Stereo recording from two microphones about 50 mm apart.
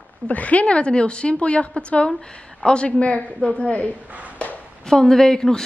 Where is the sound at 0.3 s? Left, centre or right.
Left.